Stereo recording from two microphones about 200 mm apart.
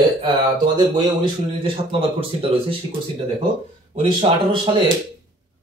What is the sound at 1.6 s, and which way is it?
Speech, 25° right (ahead or behind).